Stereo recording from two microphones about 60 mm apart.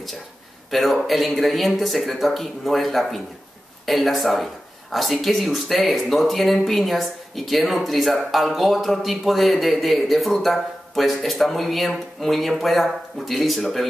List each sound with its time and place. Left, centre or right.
0.7 s speech: centre